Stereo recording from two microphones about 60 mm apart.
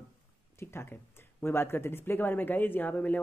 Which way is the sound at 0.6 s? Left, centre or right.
Left.